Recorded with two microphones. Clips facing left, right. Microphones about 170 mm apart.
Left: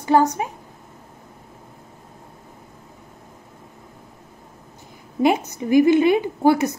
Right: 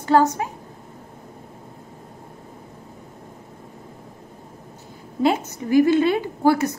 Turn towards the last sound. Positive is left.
turn(degrees=20)  # may be behind; listen again after turning